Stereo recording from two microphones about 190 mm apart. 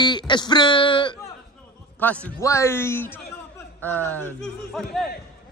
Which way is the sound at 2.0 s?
5° left (ahead or behind).